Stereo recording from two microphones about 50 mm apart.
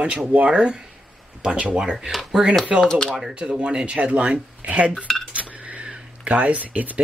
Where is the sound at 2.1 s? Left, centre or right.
Centre.